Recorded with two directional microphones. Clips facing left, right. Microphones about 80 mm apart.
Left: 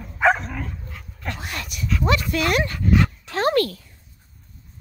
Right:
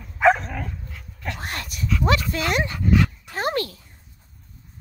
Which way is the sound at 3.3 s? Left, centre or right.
Centre.